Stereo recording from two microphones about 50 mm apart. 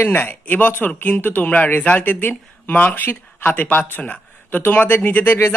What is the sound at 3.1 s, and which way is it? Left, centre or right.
Speech, left.